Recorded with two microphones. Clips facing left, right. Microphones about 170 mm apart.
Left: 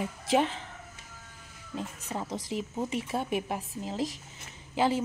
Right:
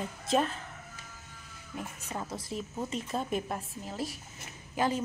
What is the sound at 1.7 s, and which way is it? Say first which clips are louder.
A woman's voice: left 3 dB; 20° left (ahead or behind).